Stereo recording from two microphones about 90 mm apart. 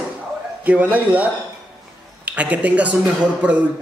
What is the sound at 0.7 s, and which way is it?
Speech, 20° right (ahead or behind).